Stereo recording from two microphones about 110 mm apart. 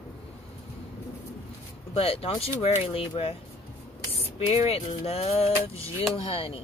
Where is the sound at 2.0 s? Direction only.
60° left (ahead or behind).